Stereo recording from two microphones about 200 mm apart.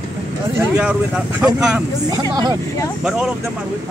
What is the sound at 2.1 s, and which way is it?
Speech, 20° right (ahead or behind).